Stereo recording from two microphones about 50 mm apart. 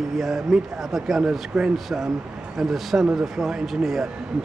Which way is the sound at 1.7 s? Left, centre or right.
Centre.